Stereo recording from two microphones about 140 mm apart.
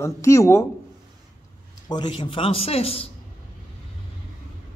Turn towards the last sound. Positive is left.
turn(degrees=45)  # may be behind; listen again after turning